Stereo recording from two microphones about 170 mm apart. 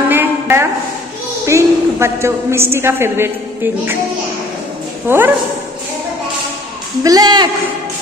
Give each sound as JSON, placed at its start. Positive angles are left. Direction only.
{"t": 0.1, "sound": "a sound", "side_deg": -15}
{"t": 1.4, "sound": "a woman's voice", "side_deg": -15}
{"t": 5.0, "sound": "speech", "side_deg": -10}
{"t": 7.0, "sound": "speech", "side_deg": -20}